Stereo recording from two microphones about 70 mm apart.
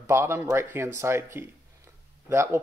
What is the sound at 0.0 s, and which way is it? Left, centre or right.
Speech, right.